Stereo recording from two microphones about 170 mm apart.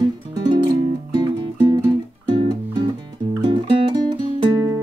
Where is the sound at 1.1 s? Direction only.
25° right (ahead or behind).